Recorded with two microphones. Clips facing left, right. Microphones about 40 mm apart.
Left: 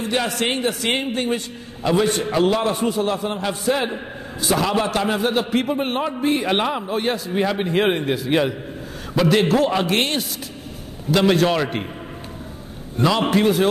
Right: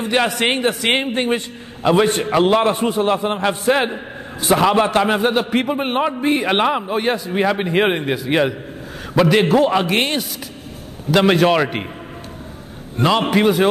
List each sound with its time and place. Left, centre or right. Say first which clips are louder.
0.1 s a man's voice: right 5 dB; right
8.1 s a man's voice: right 1 dB; centre
9.1 s a man's voice: right 3 dB; centre
11.1 s a man's voice: right 3 dB; right
11.4 s a man's voice: right 4 dB; right
12.9 s a man's voice: right 3 dB; right
13.2 s a man's voice: right 1 dB; centre